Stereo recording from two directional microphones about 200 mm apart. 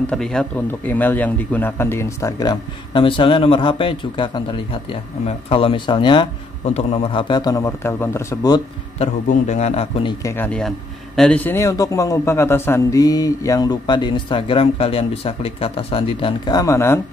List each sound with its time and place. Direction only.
0.0 s a man's voice: 5° left (ahead or behind); by 8.6 s 20° left (ahead or behind)
8.9 s a man's voice: 35° left (ahead or behind)
10.2 s a man's voice: 10° left (ahead or behind)